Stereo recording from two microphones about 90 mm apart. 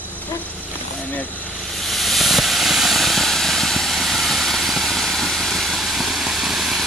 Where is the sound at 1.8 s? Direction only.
Centre (ahead or behind).